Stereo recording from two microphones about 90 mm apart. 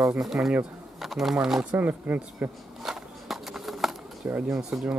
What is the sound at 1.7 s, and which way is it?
Speech, 20° right (ahead or behind).